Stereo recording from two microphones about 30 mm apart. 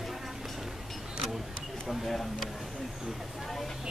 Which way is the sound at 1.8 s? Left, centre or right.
Centre.